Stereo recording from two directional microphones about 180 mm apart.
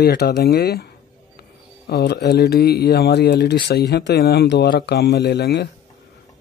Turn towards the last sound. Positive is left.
turn(degrees=65)  # may be behind; listen again after turning